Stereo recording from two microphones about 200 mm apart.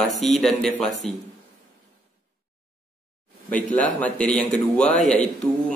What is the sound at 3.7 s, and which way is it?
A man's voice, 5° left (ahead or behind).